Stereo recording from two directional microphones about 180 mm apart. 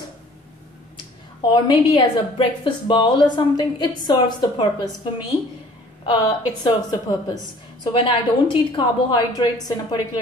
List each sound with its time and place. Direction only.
1.5 s a woman's voice: 25° left (ahead or behind)
6.0 s a woman's voice: 25° left (ahead or behind)